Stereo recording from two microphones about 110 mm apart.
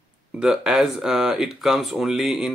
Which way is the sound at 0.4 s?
5° right (ahead or behind).